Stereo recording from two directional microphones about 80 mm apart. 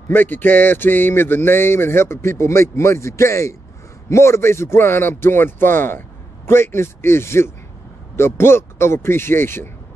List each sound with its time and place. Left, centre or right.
0.1 s speech: left